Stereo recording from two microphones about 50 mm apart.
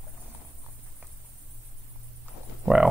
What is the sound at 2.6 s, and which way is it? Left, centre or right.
Speech, centre.